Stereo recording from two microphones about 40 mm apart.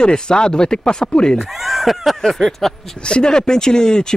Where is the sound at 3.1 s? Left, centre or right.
Left.